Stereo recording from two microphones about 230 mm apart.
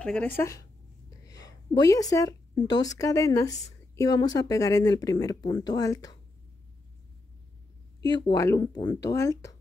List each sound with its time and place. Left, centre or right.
0.0 s speech: centre
1.2 s a sound: centre
2.7 s speech: centre
8.0 s speech: centre